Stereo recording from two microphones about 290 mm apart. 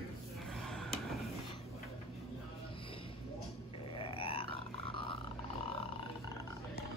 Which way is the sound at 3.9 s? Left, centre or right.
Centre.